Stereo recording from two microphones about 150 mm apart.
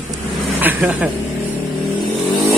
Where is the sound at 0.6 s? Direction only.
10° right (ahead or behind).